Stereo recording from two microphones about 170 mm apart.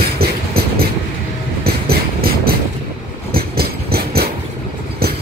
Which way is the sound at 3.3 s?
65° right (ahead or behind).